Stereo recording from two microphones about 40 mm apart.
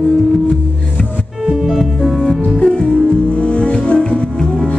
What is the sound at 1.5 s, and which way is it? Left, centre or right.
Music, centre.